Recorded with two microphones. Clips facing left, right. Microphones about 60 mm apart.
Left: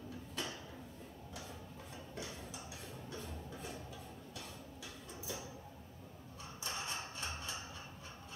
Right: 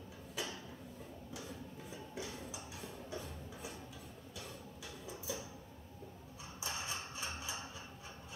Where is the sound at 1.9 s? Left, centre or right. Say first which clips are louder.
Right 1 dB; centre.